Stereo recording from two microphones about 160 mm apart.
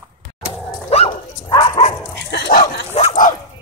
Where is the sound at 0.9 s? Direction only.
40° left (ahead or behind).